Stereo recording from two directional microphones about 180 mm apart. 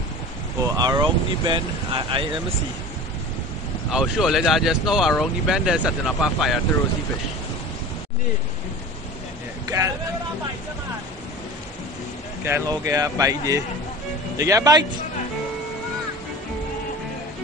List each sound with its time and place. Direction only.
0.7 s speech: 20° right (ahead or behind)
3.9 s speech: centre (ahead or behind)
9.7 s speech: 15° right (ahead or behind)
12.4 s speech: 15° right (ahead or behind)